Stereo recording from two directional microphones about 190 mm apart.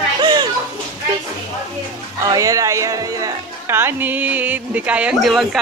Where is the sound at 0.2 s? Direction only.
25° right (ahead or behind).